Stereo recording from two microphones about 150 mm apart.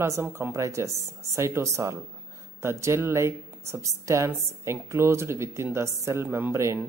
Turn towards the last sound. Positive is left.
turn(degrees=-20)  # may be behind; listen again after turning